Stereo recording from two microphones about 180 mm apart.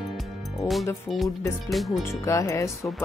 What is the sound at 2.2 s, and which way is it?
Speech, 15° left (ahead or behind).